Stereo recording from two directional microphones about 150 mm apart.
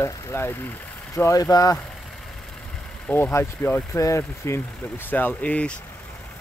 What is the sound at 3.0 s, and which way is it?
Speech, 15° left (ahead or behind).